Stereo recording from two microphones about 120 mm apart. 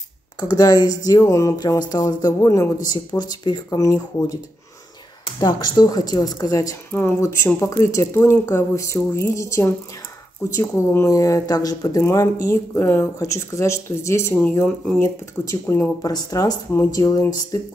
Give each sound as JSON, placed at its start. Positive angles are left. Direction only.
{"t": 0.4, "sound": "speech", "side_deg": 30}
{"t": 5.4, "sound": "speech", "side_deg": 35}
{"t": 6.9, "sound": "speech", "side_deg": 20}
{"t": 16.0, "sound": "speech", "side_deg": 30}